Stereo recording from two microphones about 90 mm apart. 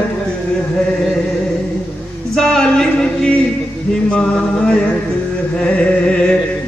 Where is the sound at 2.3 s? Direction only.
5° left (ahead or behind).